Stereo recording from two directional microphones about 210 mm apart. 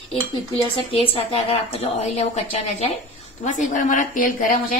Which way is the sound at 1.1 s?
30° left (ahead or behind).